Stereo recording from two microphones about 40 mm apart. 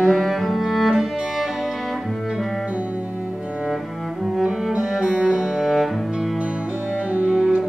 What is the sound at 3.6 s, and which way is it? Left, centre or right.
Cello, centre.